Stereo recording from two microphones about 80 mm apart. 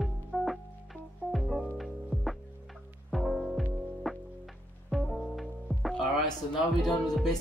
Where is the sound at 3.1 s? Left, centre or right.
Centre.